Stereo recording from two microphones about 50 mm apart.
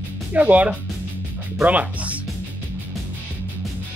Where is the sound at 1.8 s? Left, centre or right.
Right.